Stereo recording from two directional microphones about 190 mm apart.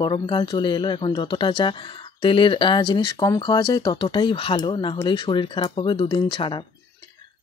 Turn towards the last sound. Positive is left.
turn(degrees=25)  # may be behind; listen again after turning